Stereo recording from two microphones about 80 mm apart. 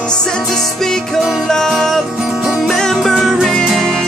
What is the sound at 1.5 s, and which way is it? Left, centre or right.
Music, centre.